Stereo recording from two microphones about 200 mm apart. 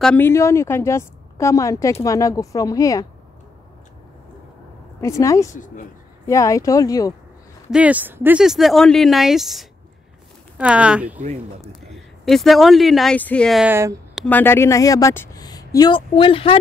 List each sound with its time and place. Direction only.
0.0 s a woman's voice: 10° left (ahead or behind)
5.0 s a woman's voice: 15° left (ahead or behind)
5.5 s speech: 40° left (ahead or behind)
6.2 s a woman's voice: 15° left (ahead or behind)
7.7 s speech: 5° right (ahead or behind)
13.7 s speech: 15° right (ahead or behind)
14.1 s a woman's voice: 5° left (ahead or behind); by 16.5 s 25° left (ahead or behind)